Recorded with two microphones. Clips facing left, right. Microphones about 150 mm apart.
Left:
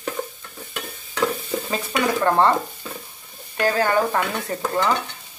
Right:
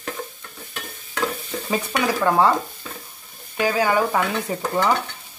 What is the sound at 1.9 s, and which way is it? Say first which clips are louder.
Stir: left 1 dB; 5° right (ahead or behind).